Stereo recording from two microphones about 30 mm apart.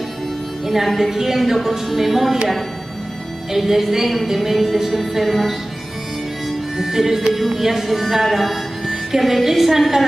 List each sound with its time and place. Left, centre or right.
0.7 s speech: centre
3.5 s speech: centre
6.8 s speech: centre
8.0 s music: centre
9.2 s speech: centre